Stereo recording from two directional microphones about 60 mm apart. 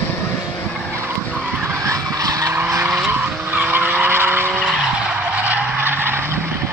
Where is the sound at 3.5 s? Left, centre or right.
Right.